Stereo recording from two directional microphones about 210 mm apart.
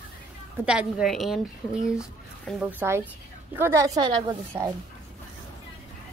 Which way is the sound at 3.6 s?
15° right (ahead or behind).